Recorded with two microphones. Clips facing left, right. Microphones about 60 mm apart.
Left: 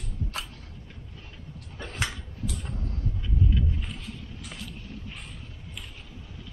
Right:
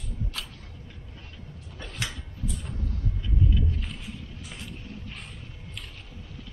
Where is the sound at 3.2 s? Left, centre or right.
Centre.